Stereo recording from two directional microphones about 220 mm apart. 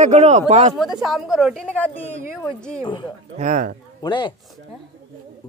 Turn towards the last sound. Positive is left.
turn(degrees=20)  # may be behind; listen again after turning